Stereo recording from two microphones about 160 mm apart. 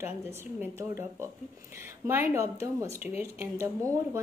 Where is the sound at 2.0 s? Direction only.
15° right (ahead or behind).